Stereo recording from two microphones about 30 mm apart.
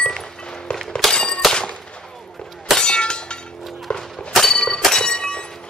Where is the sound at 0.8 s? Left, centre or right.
Centre.